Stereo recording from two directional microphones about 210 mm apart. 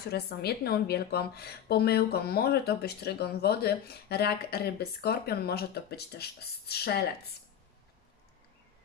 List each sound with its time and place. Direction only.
0.1 s a woman's voice: 50° left (ahead or behind)